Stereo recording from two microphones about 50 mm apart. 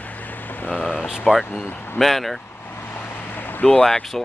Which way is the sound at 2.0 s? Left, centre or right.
Centre.